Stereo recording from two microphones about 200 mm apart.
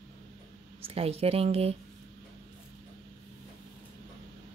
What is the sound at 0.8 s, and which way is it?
Speech, 30° right (ahead or behind).